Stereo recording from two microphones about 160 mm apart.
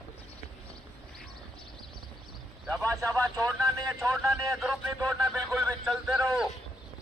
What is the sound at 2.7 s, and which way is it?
Speech, 20° right (ahead or behind).